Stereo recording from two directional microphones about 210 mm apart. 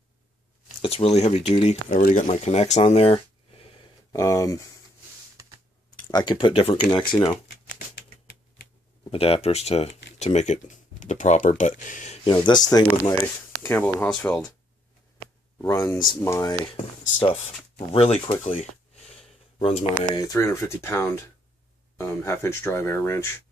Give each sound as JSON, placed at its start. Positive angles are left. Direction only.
{"t": 0.8, "sound": "speech", "side_deg": 30}
{"t": 6.1, "sound": "speech", "side_deg": 20}
{"t": 9.1, "sound": "speech", "side_deg": 25}
{"t": 12.4, "sound": "speech", "side_deg": 20}
{"t": 15.5, "sound": "speech", "side_deg": 15}
{"t": 17.7, "sound": "speech", "side_deg": 30}
{"t": 19.1, "sound": "a sound", "side_deg": 30}
{"t": 20.0, "sound": "speech", "side_deg": 15}